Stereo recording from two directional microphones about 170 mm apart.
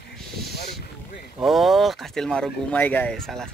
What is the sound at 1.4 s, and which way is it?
Speech, centre (ahead or behind).